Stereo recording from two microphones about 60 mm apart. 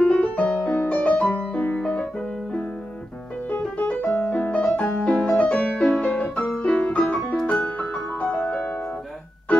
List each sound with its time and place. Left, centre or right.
0.0 s music: left
7.3 s piano: centre
7.6 s music: left